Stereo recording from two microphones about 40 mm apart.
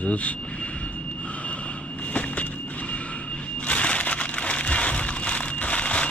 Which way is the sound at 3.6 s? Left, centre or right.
Left.